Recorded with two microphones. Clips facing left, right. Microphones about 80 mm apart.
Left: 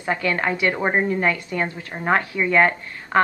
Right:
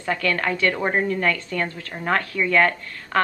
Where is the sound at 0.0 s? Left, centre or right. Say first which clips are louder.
Left 1 dB; left.